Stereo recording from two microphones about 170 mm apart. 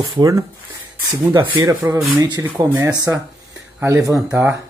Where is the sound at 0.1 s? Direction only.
20° right (ahead or behind).